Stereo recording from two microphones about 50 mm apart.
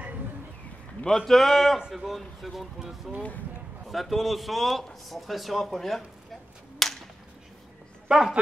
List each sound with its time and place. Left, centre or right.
1.0 s speech: centre
6.8 s whip: centre
8.1 s speech: centre